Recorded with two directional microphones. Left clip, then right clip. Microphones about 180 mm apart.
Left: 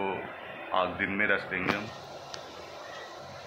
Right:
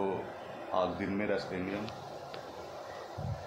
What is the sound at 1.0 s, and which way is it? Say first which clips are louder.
Speech: left 6 dB; 15° right (ahead or behind).